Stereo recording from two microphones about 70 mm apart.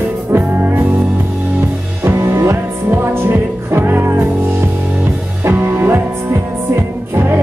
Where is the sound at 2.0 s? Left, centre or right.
Right.